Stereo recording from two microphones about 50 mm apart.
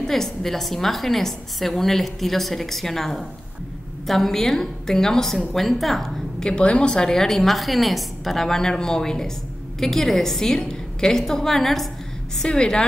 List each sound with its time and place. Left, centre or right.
0.0 s a woman's voice: centre
6.4 s a woman's voice: centre
12.4 s a woman's voice: centre